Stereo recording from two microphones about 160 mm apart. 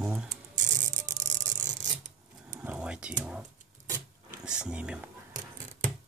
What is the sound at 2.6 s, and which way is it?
Speech, 5° right (ahead or behind).